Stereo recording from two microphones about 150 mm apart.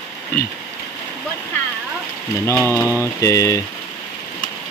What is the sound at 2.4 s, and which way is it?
Speech, 15° left (ahead or behind).